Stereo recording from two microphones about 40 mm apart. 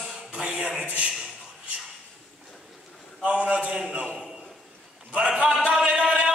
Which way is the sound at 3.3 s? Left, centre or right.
Right.